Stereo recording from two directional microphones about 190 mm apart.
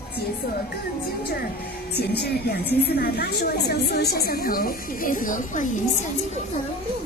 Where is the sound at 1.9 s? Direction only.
60° left (ahead or behind); by 5.8 s 40° left (ahead or behind).